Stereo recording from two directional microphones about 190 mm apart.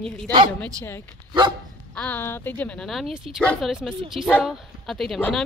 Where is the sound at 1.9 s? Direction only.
10° left (ahead or behind).